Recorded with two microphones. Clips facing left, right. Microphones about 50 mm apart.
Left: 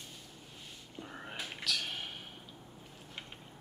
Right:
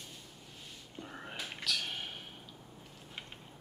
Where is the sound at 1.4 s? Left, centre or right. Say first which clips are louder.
Even; centre.